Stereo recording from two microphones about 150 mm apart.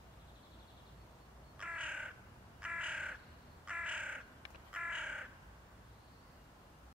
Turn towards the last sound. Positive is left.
turn(degrees=-5)  # may be behind; listen again after turning